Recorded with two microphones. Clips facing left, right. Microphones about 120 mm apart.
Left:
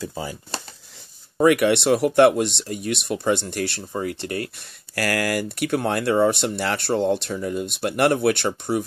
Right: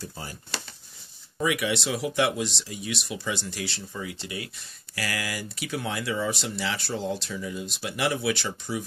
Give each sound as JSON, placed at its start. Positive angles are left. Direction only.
{"t": 1.4, "sound": "speech", "side_deg": 60}